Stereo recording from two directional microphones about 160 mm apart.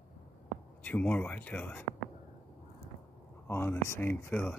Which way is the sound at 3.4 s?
15° left (ahead or behind).